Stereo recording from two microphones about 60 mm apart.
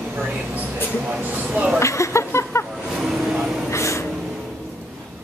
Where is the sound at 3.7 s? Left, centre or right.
Left.